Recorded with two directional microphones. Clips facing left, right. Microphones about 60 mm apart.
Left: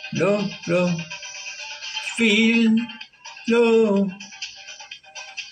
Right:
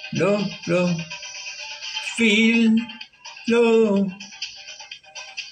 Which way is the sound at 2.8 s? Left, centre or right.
Centre.